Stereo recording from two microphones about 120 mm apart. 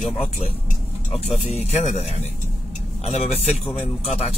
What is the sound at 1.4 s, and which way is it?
Speech, 60° left (ahead or behind).